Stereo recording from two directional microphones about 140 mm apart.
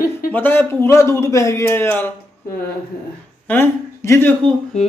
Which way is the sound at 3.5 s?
20° left (ahead or behind).